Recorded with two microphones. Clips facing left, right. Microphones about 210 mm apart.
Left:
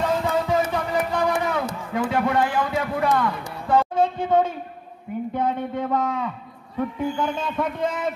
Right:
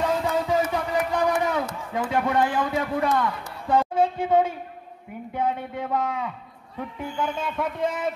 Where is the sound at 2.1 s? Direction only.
20° right (ahead or behind).